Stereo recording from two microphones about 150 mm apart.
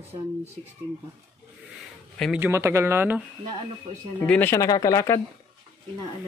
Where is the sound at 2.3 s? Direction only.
15° right (ahead or behind).